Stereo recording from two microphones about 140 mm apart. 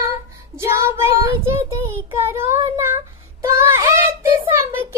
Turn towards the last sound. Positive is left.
turn(degrees=-20)  # may be behind; listen again after turning